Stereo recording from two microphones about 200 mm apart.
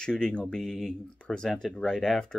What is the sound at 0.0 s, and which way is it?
Speech, 5° left (ahead or behind).